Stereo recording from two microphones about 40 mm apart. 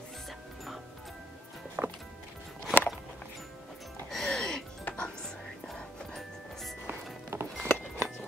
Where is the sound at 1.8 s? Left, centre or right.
Right.